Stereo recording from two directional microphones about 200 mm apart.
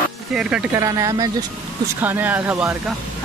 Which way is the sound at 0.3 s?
5° right (ahead or behind).